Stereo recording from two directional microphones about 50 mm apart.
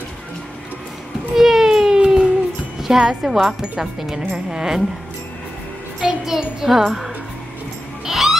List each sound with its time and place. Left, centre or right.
1.3 s a sound: centre
2.8 s a woman's voice: centre
3.6 s a woman's voice: centre
5.9 s music: centre